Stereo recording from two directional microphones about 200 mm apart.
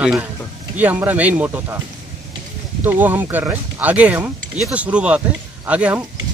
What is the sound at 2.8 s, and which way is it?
Speech, 10° right (ahead or behind).